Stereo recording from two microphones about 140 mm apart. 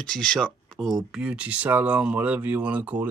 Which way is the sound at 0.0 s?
5° left (ahead or behind).